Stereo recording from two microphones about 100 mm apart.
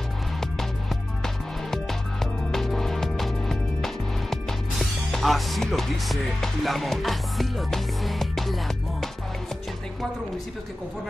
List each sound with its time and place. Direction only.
0.4 s music: 5° left (ahead or behind)